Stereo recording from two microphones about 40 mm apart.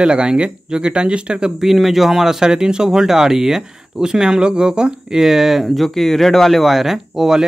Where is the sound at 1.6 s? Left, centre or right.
Centre.